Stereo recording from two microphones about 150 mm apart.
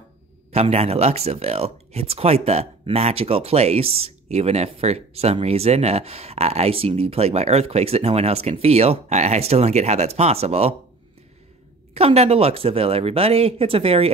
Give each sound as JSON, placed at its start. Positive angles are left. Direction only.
{"t": 0.5, "sound": "speech", "side_deg": -45}
{"t": 11.9, "sound": "speech", "side_deg": -45}